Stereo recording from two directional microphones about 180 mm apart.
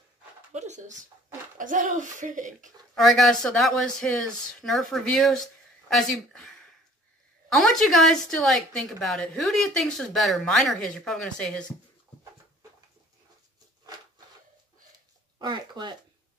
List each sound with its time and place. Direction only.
0.5 s speech: 40° right (ahead or behind)
2.9 s a woman's voice: centre (ahead or behind)
15.3 s speech: 25° right (ahead or behind)